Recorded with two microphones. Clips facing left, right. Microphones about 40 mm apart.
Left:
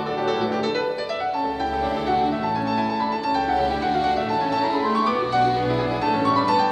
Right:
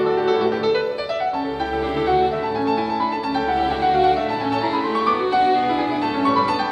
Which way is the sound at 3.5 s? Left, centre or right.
Right.